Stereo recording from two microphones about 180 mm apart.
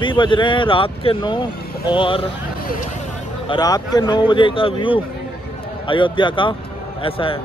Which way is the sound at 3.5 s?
20° left (ahead or behind).